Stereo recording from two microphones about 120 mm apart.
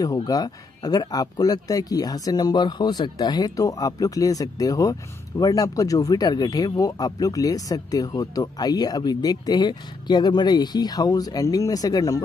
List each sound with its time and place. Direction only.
0.0 s speech: 30° left (ahead or behind)